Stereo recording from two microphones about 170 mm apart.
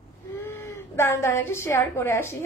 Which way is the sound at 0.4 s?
15° left (ahead or behind).